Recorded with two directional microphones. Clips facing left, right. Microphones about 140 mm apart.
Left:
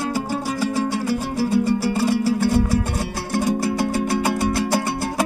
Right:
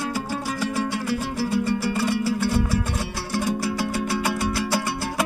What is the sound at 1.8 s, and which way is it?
Music, 40° left (ahead or behind).